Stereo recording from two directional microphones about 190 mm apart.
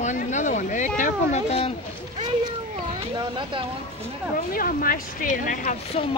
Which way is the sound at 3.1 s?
25° right (ahead or behind).